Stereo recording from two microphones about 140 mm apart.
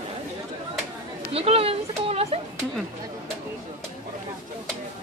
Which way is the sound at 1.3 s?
45° right (ahead or behind).